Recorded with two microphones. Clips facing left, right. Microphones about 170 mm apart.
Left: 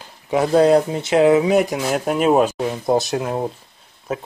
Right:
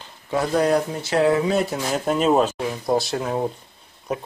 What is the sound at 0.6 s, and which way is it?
Speech, 30° left (ahead or behind).